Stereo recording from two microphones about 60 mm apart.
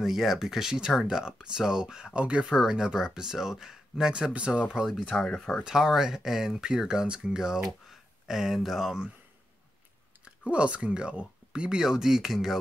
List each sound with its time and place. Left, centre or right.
0.0 s speech: centre
4.7 s speech: centre
5.6 s speech: centre
10.2 s speech: centre